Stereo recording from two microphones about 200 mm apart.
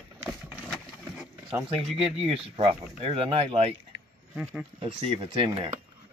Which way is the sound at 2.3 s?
30° right (ahead or behind).